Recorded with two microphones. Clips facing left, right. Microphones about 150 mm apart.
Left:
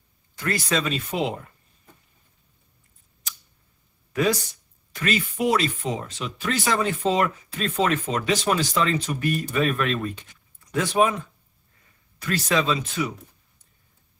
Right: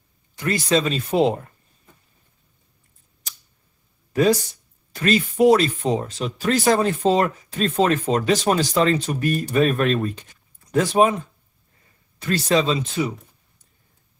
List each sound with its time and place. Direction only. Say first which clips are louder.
0.4 s speech: right 5 dB; 25° right (ahead or behind)
4.1 s speech: right 5 dB; 35° right (ahead or behind)